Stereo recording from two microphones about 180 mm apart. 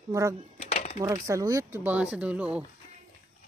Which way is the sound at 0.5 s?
40° left (ahead or behind).